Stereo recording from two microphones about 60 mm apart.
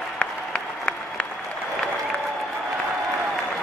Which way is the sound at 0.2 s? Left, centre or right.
Centre.